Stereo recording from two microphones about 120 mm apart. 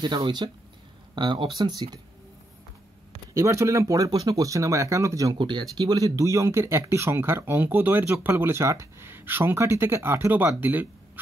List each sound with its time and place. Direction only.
0.0 s speech: 45° right (ahead or behind)
3.3 s speech: 25° right (ahead or behind)
5.4 s speech: 40° right (ahead or behind); by 10.9 s 15° right (ahead or behind)